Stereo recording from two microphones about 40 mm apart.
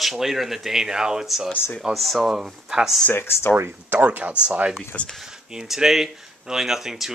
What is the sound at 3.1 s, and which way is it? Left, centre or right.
Speech, left.